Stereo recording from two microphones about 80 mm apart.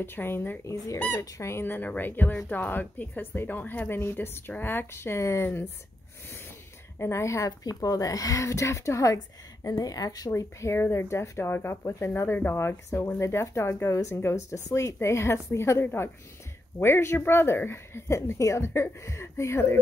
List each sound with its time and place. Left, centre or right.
0.0 s a woman's voice: left
1.2 s a woman's voice: left
7.0 s speech: left
10.6 s speech: left